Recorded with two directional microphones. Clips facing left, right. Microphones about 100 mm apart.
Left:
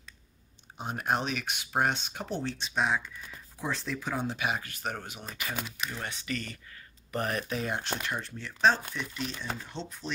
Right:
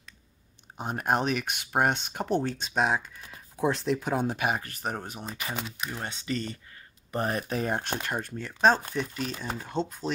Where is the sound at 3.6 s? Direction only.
55° right (ahead or behind); by 5.5 s 35° right (ahead or behind).